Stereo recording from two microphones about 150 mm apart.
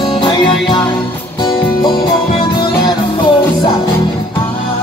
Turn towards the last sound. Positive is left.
turn(degrees=35)  # may be behind; listen again after turning